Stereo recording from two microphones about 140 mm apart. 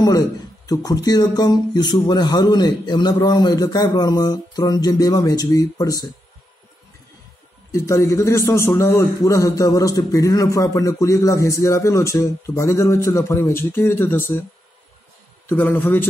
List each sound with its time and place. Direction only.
0.0 s a man's voice: 25° left (ahead or behind)
7.7 s a man's voice: 20° left (ahead or behind)
15.4 s a man's voice: 15° left (ahead or behind)